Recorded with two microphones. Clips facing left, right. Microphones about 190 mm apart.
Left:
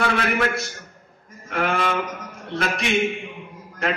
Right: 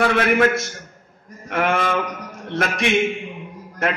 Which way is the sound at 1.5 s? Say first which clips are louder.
Right 2 dB; 50° right (ahead or behind).